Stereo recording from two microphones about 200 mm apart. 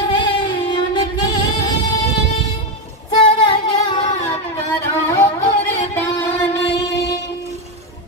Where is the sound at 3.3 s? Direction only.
25° left (ahead or behind).